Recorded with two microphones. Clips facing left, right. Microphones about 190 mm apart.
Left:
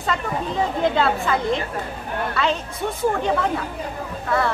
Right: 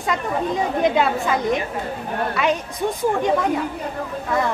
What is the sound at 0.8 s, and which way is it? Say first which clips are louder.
Speech: right 1 dB; 15° right (ahead or behind).